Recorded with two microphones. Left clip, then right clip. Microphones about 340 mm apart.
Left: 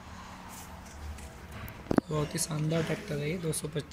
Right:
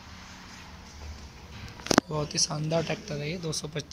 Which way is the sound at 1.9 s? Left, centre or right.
Right.